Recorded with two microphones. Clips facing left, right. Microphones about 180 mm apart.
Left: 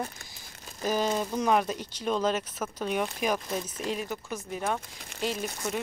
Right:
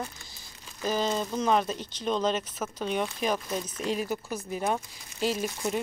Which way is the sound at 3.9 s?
5° right (ahead or behind).